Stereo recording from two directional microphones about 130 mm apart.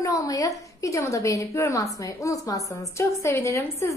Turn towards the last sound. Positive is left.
turn(degrees=25)  # may be behind; listen again after turning